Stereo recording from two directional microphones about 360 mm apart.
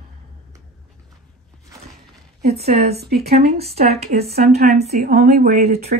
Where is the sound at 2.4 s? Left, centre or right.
Centre.